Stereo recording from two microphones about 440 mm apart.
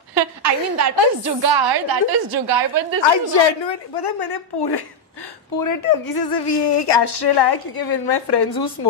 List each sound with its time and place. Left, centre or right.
0.1 s a sound: right
1.2 s a woman's voice: right
3.0 s a woman's voice: left
5.6 s a woman's voice: left